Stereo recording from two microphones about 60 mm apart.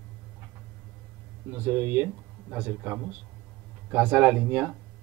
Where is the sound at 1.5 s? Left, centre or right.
Right.